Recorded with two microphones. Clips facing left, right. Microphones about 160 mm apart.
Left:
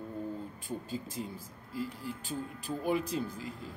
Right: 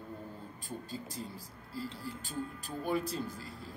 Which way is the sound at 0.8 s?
40° right (ahead or behind).